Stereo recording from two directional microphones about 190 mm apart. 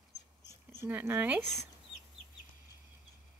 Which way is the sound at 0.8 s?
10° right (ahead or behind).